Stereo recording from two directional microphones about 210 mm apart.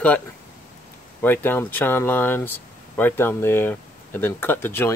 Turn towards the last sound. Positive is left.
turn(degrees=10)  # may be behind; listen again after turning